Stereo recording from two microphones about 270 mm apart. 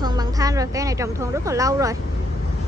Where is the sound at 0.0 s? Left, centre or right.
Centre.